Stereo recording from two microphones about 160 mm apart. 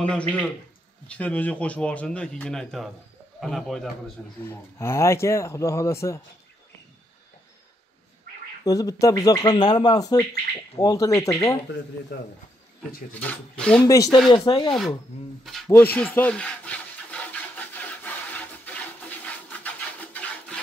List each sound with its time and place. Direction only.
1.0 s speech: 10° left (ahead or behind)
4.4 s speech: 15° left (ahead or behind)
8.6 s speech: 20° left (ahead or behind)
13.1 s speech: 10° left (ahead or behind)
13.8 s speech: 20° left (ahead or behind)
15.4 s speech: centre (ahead or behind)
15.8 s rub: 10° left (ahead or behind)
18.7 s a sound: 10° left (ahead or behind)